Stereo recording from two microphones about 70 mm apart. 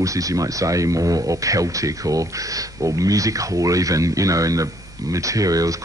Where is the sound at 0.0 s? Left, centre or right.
Right.